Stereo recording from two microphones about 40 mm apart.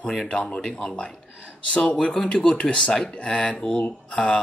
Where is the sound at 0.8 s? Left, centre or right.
Left.